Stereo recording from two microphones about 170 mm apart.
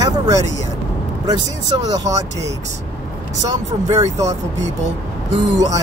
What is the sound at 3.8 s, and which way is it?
Speech, 20° right (ahead or behind).